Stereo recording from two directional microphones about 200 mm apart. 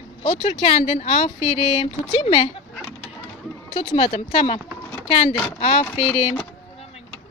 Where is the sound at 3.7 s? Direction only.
30° left (ahead or behind).